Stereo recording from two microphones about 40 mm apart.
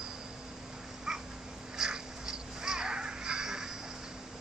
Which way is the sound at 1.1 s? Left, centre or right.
Centre.